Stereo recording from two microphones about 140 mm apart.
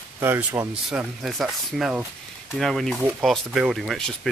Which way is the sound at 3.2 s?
Centre (ahead or behind).